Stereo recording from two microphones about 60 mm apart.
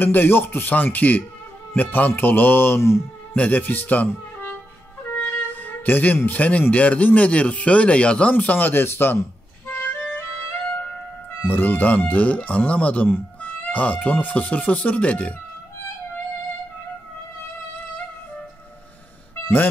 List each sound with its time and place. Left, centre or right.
0.0 s a man's voice: left
3.3 s speech: left
5.2 s wind instrument: left
6.7 s speech: left
8.4 s music: left
10.6 s music: centre
11.4 s speech: left